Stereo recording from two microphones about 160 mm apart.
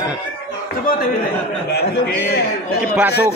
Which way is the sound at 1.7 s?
90° left.